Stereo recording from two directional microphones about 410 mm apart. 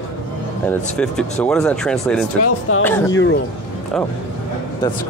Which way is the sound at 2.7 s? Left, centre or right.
Left.